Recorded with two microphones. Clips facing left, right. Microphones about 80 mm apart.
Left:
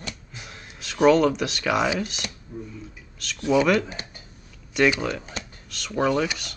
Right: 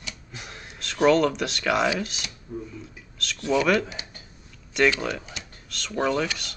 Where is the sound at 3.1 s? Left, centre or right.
Centre.